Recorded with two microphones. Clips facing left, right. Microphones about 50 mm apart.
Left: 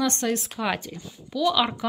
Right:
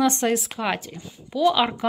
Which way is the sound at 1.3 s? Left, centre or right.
Centre.